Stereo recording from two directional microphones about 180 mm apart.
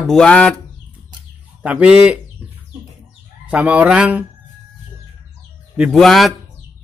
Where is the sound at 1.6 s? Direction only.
5° right (ahead or behind).